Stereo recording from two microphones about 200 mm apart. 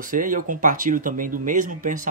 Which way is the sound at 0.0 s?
40° right (ahead or behind).